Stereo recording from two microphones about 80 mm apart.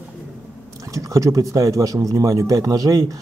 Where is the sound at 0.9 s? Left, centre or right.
Right.